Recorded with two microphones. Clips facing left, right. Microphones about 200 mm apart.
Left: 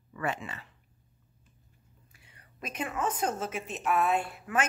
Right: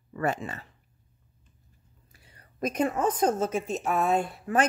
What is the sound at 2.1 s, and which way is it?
A woman's voice, 40° right (ahead or behind).